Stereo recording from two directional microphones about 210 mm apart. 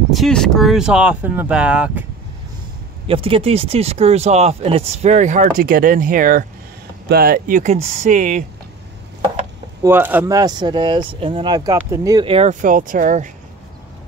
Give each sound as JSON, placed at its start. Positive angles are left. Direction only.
{"t": 0.1, "sound": "speech", "side_deg": 0}
{"t": 3.1, "sound": "speech", "side_deg": -25}
{"t": 9.8, "sound": "speech", "side_deg": -10}